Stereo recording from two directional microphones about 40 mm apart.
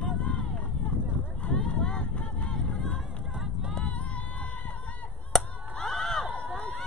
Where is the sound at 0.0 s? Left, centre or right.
Left.